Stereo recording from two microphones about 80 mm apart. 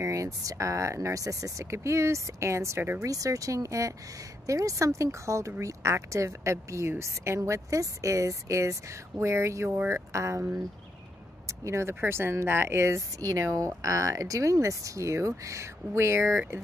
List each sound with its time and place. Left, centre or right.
0.0 s speech: right
3.1 s speech: right
11.4 s speech: right